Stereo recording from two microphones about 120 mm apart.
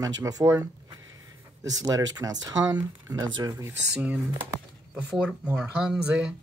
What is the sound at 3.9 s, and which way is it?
Speech, 10° right (ahead or behind).